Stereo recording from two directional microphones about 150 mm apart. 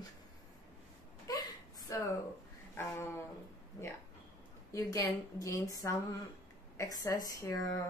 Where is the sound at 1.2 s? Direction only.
25° left (ahead or behind).